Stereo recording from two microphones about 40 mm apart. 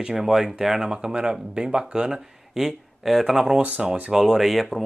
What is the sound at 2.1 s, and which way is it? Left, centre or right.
Speech, centre.